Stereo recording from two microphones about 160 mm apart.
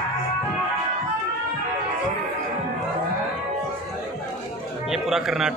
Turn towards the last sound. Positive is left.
turn(degrees=-5)  # may be behind; listen again after turning